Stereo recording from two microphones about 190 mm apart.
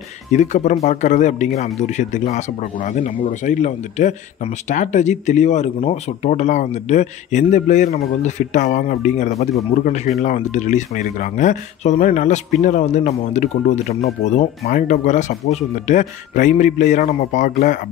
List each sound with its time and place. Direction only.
0.3 s speech: 40° left (ahead or behind)